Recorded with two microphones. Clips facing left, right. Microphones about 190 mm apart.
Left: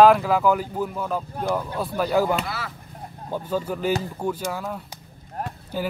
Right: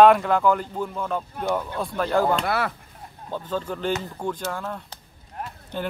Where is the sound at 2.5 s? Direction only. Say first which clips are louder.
Right 8 dB; 60° right (ahead or behind).